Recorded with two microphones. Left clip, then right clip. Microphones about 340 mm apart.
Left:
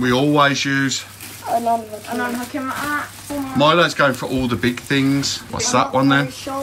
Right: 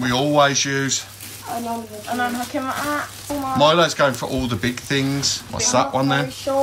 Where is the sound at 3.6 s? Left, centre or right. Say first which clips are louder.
Left 1 dB; centre.